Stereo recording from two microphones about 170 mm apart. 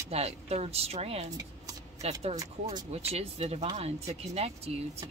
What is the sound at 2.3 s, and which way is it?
Speech, 20° right (ahead or behind).